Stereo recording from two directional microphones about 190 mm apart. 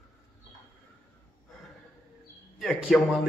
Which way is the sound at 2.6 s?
Centre (ahead or behind).